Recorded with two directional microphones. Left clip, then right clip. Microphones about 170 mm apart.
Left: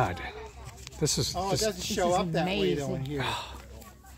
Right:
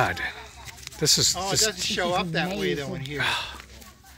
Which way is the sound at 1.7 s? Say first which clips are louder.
Right 2 dB; 60° left (ahead or behind).